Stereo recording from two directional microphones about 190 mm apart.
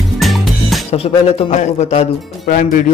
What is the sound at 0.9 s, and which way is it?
A man's voice, 30° left (ahead or behind).